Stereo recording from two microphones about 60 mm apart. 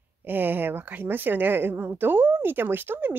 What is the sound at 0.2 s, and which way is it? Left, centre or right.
Speech, right.